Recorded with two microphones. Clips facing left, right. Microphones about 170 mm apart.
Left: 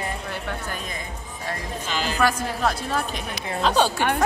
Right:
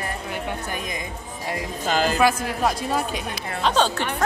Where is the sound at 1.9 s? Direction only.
45° right (ahead or behind).